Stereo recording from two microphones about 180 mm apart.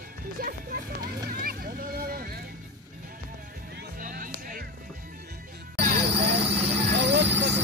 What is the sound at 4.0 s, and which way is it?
Music, 50° right (ahead or behind).